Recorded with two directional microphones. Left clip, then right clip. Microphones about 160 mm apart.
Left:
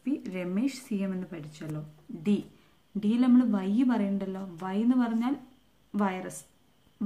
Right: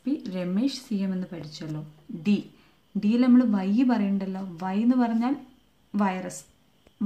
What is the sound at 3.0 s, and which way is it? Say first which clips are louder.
Speech: right 3 dB; 30° right (ahead or behind).